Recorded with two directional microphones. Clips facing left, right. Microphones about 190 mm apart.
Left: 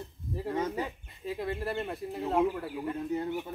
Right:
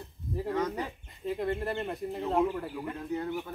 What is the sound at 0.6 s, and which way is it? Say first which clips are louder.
Bird: even; 30° left (ahead or behind).